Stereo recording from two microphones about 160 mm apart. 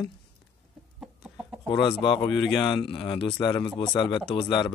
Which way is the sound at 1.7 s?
30° left (ahead or behind).